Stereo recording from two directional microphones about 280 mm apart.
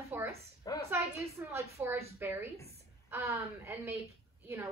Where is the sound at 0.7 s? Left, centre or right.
Centre.